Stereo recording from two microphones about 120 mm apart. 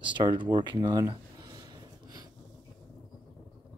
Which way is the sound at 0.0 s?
40° right (ahead or behind).